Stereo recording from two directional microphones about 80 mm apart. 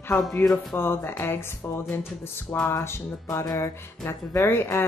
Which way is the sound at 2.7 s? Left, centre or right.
Left.